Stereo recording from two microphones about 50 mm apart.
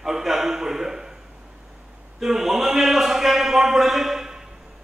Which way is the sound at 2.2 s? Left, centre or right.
Centre.